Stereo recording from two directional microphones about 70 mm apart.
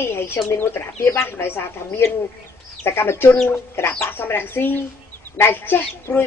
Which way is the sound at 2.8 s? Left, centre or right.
Left.